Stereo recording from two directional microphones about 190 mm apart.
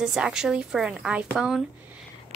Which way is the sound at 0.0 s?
5° right (ahead or behind).